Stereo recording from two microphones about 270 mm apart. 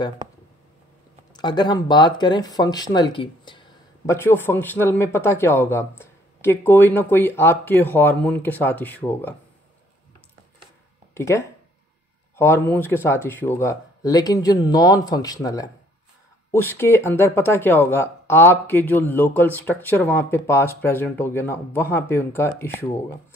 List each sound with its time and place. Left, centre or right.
1.3 s speech: centre
11.1 s speech: centre